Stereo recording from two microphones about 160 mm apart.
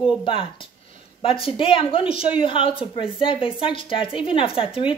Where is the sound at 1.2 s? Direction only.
35° left (ahead or behind).